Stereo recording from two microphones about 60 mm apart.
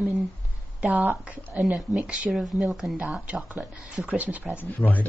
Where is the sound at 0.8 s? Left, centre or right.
Right.